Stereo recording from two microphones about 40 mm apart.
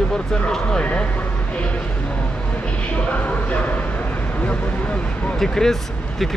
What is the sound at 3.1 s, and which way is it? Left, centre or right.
Speech, left.